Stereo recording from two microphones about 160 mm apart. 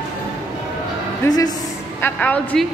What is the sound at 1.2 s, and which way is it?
Speech, 25° left (ahead or behind).